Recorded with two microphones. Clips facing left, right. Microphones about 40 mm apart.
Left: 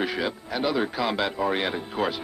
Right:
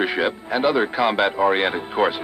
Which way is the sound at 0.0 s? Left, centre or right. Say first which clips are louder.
Right 6 dB; right.